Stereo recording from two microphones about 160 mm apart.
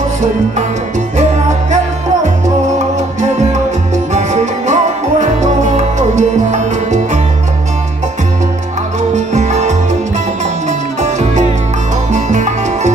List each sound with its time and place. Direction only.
4.1 s music: 45° right (ahead or behind)
9.1 s music: 45° right (ahead or behind)